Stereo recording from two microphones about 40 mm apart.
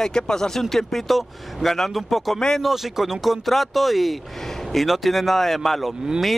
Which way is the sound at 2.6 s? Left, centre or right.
Centre.